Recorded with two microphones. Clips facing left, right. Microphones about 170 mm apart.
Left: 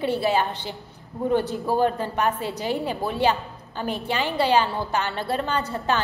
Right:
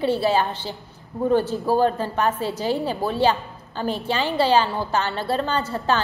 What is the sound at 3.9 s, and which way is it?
A woman's voice, 20° left (ahead or behind).